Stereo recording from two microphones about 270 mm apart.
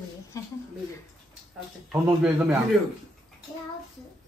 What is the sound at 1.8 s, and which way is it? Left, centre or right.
Speech, centre.